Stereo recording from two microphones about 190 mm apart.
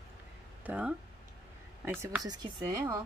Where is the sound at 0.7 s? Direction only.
10° right (ahead or behind).